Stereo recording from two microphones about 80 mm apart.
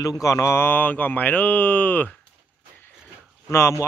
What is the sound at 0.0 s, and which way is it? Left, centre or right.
Speech, left.